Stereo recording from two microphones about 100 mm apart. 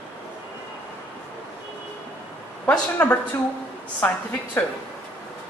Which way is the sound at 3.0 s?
15° left (ahead or behind).